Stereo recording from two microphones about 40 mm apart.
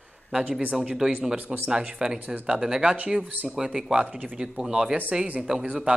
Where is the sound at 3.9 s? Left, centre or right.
Right.